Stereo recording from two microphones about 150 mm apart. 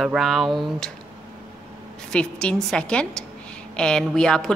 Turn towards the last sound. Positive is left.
turn(degrees=5)  # may be behind; listen again after turning